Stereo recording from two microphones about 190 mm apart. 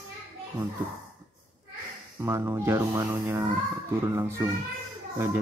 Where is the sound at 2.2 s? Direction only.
15° right (ahead or behind).